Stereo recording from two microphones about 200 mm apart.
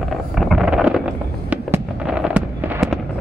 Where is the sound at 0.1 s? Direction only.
Centre (ahead or behind).